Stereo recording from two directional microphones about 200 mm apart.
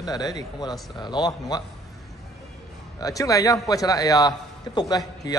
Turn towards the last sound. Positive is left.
turn(degrees=20)  # may be behind; listen again after turning